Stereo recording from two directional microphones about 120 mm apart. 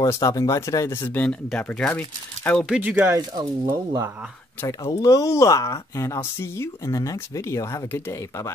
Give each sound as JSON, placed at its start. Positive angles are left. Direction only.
{"t": 0.0, "sound": "speech", "side_deg": 30}
{"t": 2.6, "sound": "speech", "side_deg": -10}
{"t": 3.1, "sound": "speech", "side_deg": -35}
{"t": 4.6, "sound": "speech", "side_deg": 30}